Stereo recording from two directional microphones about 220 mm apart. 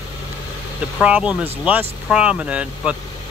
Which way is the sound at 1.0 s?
5° right (ahead or behind).